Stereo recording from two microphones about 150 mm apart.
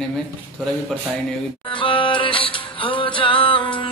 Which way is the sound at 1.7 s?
35° left (ahead or behind).